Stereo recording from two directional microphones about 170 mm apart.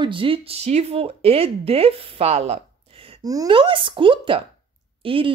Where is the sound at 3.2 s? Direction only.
25° right (ahead or behind).